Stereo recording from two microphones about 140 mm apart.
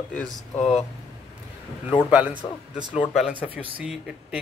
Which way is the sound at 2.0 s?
10° right (ahead or behind).